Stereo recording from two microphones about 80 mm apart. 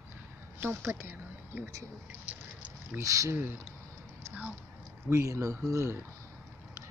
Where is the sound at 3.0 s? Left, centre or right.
Right.